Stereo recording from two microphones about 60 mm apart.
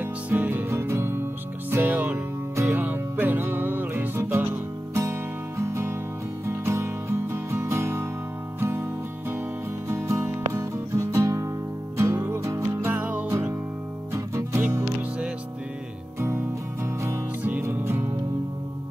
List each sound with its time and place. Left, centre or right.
0.0 s music: right
0.7 s music: right
1.9 s music: right
5.6 s music: right
9.8 s music: right
12.9 s music: right
13.3 s music: right
16.2 s music: right
17.7 s music: right